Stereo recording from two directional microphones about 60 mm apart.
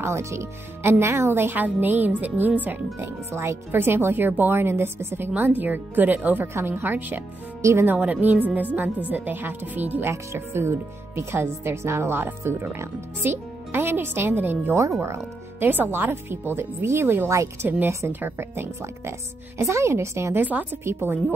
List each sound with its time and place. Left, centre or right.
0.0 s speech: right
0.9 s speech: right
3.0 s speech: right
5.3 s speech: right
10.1 s speech: right
14.7 s speech: right
15.6 s speech: right
17.3 s speech: right
17.8 s speech: right
19.6 s speech: right
20.3 s speech: right
20.8 s speech: right